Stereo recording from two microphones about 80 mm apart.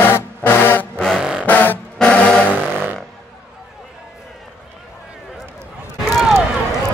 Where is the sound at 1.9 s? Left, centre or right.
Centre.